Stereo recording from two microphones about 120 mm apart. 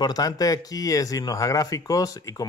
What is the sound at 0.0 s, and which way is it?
Speech, 30° left (ahead or behind).